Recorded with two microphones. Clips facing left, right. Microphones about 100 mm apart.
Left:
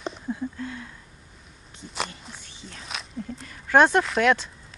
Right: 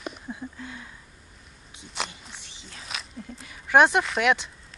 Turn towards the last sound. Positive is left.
turn(degrees=-5)  # may be behind; listen again after turning